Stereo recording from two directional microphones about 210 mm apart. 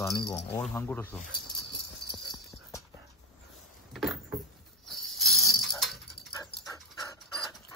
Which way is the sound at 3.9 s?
Centre (ahead or behind).